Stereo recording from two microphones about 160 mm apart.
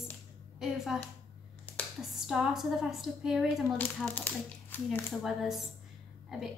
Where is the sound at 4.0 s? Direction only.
10° left (ahead or behind).